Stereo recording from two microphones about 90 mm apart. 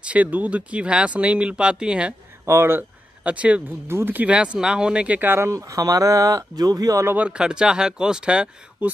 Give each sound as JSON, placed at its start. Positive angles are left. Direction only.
{"t": 0.0, "sound": "speech", "side_deg": -15}
{"t": 2.4, "sound": "speech", "side_deg": -30}
{"t": 3.3, "sound": "speech", "side_deg": -15}
{"t": 3.8, "sound": "speech", "side_deg": -25}
{"t": 7.1, "sound": "speech", "side_deg": -15}